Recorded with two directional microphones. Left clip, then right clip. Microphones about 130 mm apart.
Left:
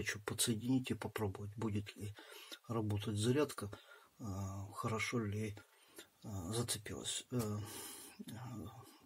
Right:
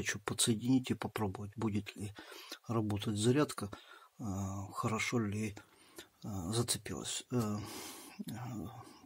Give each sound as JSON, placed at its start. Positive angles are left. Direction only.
{"t": 0.0, "sound": "speech", "side_deg": -50}